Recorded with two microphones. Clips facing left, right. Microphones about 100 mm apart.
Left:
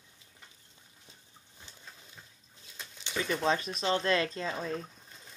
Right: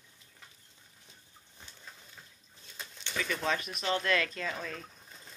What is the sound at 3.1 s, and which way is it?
Speech, 25° left (ahead or behind).